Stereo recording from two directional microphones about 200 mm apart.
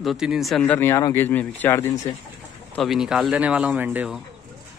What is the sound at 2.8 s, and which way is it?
Speech, centre (ahead or behind).